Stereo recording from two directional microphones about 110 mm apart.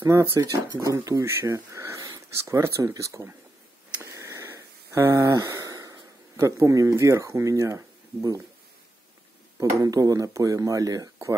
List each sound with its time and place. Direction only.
0.0 s speech: 25° right (ahead or behind)
4.0 s a sound: 25° right (ahead or behind)
9.6 s speech: 30° right (ahead or behind)